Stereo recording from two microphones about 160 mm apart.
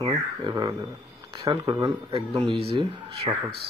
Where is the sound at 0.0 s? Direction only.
25° right (ahead or behind).